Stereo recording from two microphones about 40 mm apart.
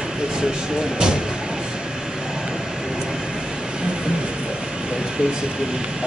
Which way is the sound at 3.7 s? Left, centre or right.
Right.